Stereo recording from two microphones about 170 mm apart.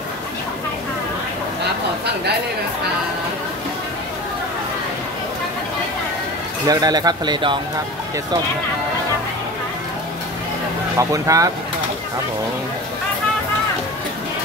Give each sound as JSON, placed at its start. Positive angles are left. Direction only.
{"t": 6.7, "sound": "speech", "side_deg": -25}
{"t": 11.0, "sound": "speech", "side_deg": -20}